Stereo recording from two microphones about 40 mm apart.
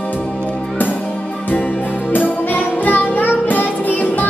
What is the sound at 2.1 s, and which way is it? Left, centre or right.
Music, left.